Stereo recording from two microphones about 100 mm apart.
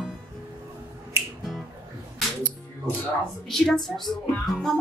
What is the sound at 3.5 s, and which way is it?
A woman's voice, centre (ahead or behind).